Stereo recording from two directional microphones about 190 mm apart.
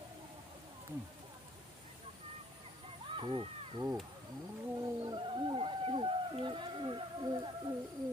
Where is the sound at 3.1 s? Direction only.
25° right (ahead or behind).